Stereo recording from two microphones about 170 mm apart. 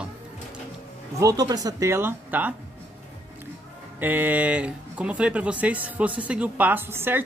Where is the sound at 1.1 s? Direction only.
20° right (ahead or behind).